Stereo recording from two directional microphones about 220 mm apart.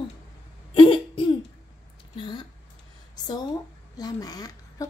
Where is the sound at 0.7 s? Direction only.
25° left (ahead or behind).